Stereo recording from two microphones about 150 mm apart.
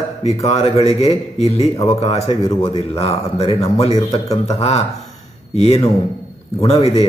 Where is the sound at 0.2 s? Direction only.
45° left (ahead or behind).